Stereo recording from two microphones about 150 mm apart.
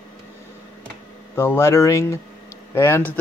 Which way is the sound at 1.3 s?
15° left (ahead or behind).